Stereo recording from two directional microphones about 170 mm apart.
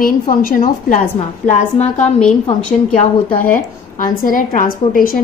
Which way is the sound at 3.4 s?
55° left (ahead or behind).